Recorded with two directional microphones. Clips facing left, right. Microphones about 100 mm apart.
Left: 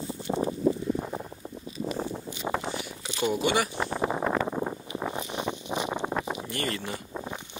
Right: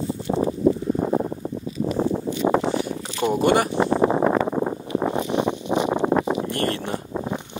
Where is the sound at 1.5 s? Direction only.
90° right.